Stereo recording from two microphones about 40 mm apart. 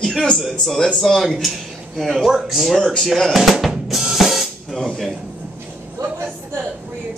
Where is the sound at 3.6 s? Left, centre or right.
Centre.